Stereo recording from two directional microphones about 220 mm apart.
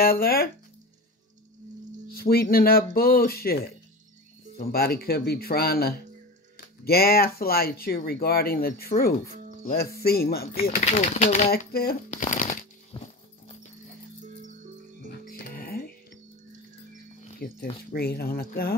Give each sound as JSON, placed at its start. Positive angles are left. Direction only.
{"t": 0.0, "sound": "speech", "side_deg": 45}
{"t": 2.1, "sound": "speech", "side_deg": 45}
{"t": 10.8, "sound": "speech", "side_deg": 30}
{"t": 11.5, "sound": "speech", "side_deg": 45}
{"t": 12.9, "sound": "horse", "side_deg": 20}
{"t": 15.2, "sound": "music", "side_deg": 40}
{"t": 17.2, "sound": "a sound", "side_deg": 40}
{"t": 17.9, "sound": "speech", "side_deg": 45}